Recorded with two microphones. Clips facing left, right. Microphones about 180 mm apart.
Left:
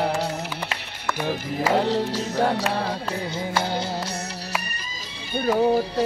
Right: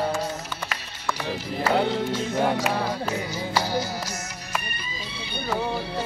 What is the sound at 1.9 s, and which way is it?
Music, 35° left (ahead or behind).